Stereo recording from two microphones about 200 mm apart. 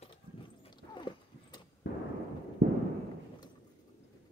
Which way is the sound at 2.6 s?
50° right (ahead or behind).